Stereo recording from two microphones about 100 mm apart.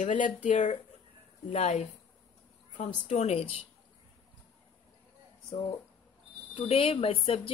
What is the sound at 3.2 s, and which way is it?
Speech, 90° left.